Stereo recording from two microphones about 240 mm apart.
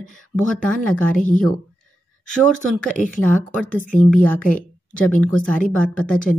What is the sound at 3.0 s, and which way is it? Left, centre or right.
A woman's voice, centre.